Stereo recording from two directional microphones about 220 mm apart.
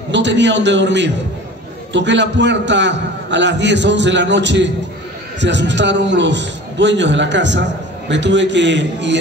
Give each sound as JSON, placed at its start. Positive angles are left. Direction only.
{"t": 0.1, "sound": "a man's voice", "side_deg": -55}